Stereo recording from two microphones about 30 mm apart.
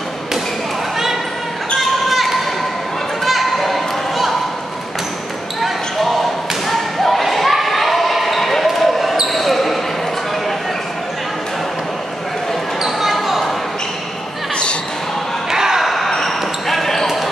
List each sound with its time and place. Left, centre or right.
1.8 s basketball bounce: centre
6.7 s thump: centre
7.5 s basketball bounce: centre
15.5 s basketball bounce: centre
15.8 s basketball bounce: centre